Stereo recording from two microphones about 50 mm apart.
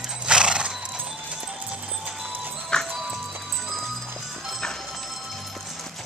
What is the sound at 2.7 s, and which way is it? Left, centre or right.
Music, centre.